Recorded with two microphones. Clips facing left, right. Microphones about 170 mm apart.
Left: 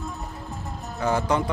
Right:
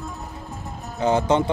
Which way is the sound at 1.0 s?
20° right (ahead or behind).